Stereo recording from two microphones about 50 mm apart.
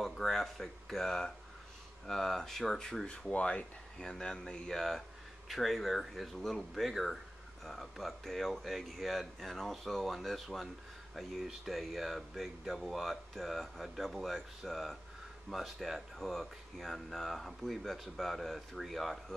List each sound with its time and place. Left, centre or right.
0.0 s speech: centre
3.3 s speech: left
4.0 s speech: centre